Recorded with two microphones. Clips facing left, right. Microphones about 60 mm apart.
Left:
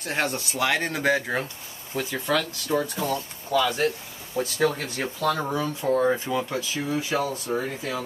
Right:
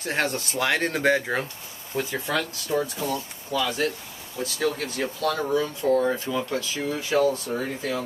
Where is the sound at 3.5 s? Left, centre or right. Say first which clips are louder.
Left 3 dB; left; by 7.6 s centre.